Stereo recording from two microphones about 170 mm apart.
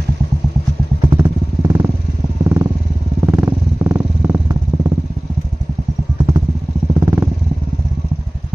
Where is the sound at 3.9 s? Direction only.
15° right (ahead or behind).